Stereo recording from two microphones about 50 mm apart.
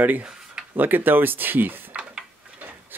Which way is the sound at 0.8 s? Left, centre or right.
Right.